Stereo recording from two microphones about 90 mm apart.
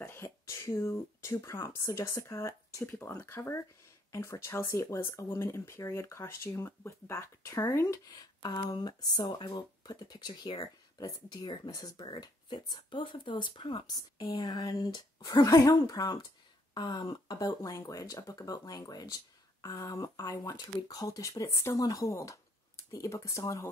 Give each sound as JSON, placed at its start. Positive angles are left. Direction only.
{"t": 0.0, "sound": "speech", "side_deg": 30}
{"t": 2.8, "sound": "speech", "side_deg": 25}
{"t": 7.9, "sound": "speech", "side_deg": 45}
{"t": 13.8, "sound": "speech", "side_deg": 50}
{"t": 17.6, "sound": "speech", "side_deg": 40}
{"t": 21.7, "sound": "speech", "side_deg": 45}